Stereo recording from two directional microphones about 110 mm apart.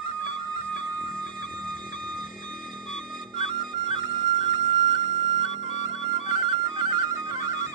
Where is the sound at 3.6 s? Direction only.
40° right (ahead or behind).